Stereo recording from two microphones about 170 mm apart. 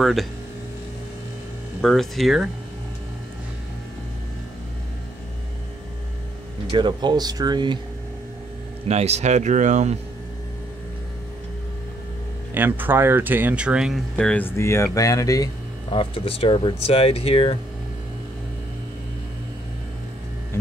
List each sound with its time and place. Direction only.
0.0 s speech: centre (ahead or behind)
1.8 s speech: centre (ahead or behind)
6.7 s speech: 25° right (ahead or behind)
8.8 s speech: 40° right (ahead or behind)
12.5 s speech: 10° right (ahead or behind); by 17.6 s 30° left (ahead or behind)